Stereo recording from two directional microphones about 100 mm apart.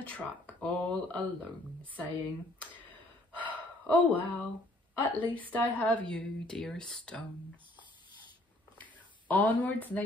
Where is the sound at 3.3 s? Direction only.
15° left (ahead or behind).